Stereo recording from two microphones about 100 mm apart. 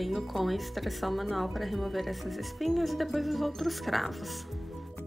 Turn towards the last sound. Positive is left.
turn(degrees=0)  # may be behind; listen again after turning